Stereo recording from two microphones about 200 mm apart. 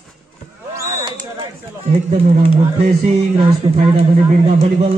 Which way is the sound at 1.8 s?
30° right (ahead or behind).